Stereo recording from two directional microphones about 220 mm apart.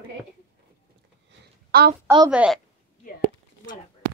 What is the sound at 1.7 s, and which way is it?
Speech, 45° right (ahead or behind).